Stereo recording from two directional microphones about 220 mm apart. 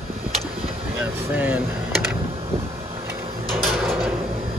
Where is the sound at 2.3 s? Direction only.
25° right (ahead or behind).